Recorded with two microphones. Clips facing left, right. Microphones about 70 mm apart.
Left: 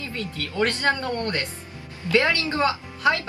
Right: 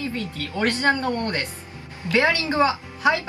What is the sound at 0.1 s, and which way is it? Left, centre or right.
Speech, right.